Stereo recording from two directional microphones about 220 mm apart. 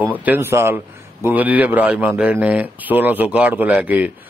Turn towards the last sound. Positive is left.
turn(degrees=-5)  # may be behind; listen again after turning